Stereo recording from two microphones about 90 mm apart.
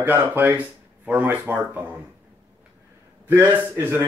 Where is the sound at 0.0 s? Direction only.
20° right (ahead or behind).